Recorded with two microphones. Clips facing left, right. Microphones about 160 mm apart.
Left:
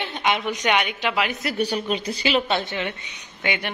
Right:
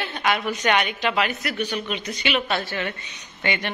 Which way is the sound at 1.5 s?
35° left (ahead or behind).